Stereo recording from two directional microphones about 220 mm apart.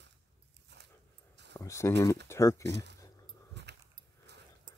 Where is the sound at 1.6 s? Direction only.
15° left (ahead or behind).